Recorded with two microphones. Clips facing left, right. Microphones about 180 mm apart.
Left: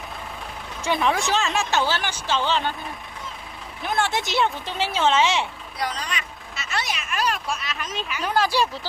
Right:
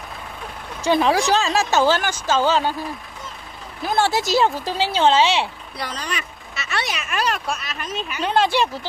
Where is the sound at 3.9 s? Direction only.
35° right (ahead or behind).